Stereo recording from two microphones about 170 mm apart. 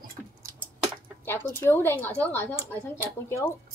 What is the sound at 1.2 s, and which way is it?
A woman's voice, 10° left (ahead or behind).